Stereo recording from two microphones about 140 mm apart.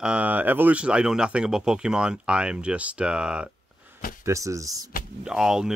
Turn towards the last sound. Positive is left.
turn(degrees=-5)  # may be behind; listen again after turning